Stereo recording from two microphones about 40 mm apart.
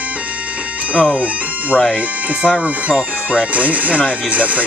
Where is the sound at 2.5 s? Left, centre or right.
Right.